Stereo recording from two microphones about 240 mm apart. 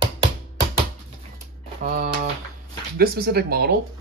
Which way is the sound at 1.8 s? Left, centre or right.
Right.